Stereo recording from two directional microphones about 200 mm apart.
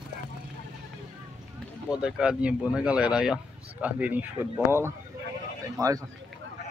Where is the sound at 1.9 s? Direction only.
5° right (ahead or behind).